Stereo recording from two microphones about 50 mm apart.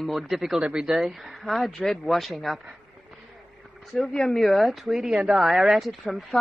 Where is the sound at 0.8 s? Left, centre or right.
Centre.